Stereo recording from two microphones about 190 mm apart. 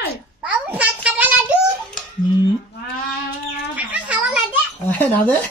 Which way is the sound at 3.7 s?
5° right (ahead or behind).